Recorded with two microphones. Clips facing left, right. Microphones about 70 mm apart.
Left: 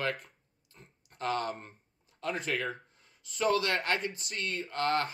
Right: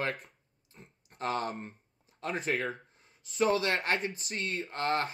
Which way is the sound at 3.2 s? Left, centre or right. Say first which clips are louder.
Right 1 dB; right.